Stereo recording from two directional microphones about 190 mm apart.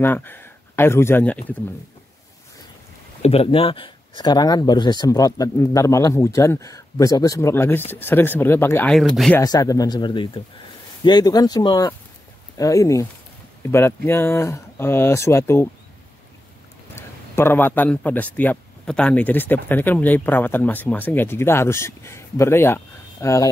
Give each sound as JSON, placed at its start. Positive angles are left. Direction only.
{"t": 0.0, "sound": "speech", "side_deg": 10}
{"t": 3.2, "sound": "speech", "side_deg": 30}
{"t": 9.4, "sound": "speech", "side_deg": 20}
{"t": 16.9, "sound": "speech", "side_deg": 10}